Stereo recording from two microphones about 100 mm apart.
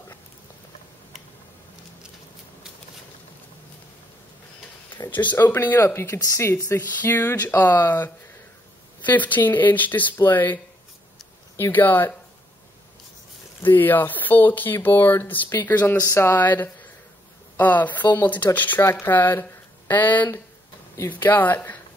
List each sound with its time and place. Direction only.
5.3 s speech: 20° left (ahead or behind)
13.6 s speech: 20° left (ahead or behind)